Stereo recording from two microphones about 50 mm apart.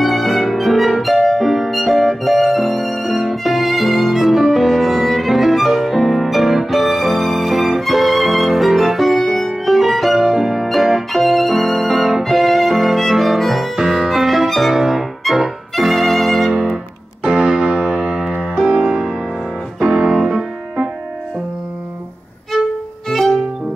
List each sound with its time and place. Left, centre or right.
0.0 s music: centre
17.2 s music: centre
22.5 s violin: centre
23.0 s music: centre